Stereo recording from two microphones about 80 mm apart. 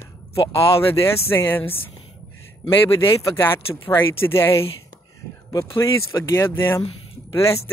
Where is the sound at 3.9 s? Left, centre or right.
Left.